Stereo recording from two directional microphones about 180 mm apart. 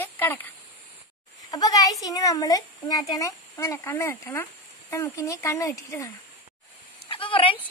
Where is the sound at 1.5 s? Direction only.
20° left (ahead or behind).